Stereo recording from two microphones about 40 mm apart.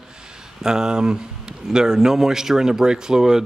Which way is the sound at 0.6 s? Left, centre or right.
Centre.